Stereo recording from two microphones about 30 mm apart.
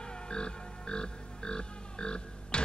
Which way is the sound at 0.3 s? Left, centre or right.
Left.